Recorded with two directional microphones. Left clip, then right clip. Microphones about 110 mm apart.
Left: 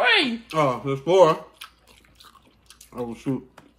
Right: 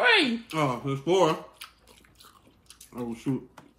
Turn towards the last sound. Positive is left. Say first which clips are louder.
# left 3 dB
turn(degrees=35)  # may be behind; listen again after turning